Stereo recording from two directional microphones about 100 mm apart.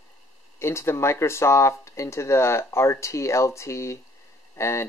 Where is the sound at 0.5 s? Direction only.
25° left (ahead or behind).